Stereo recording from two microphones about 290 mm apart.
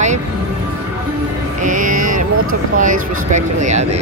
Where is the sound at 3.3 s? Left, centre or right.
Right.